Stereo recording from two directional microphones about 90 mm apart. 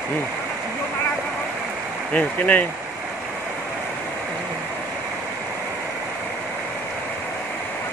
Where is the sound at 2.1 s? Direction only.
15° left (ahead or behind).